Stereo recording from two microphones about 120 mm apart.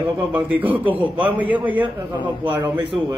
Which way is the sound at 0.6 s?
15° right (ahead or behind).